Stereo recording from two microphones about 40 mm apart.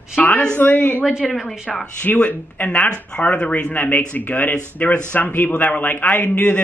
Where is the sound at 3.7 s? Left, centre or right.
Left.